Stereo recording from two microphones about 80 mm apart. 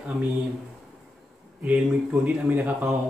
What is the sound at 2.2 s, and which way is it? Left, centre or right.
Speech, centre.